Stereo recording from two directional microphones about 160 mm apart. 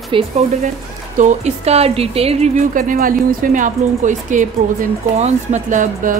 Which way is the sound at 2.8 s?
60° right (ahead or behind).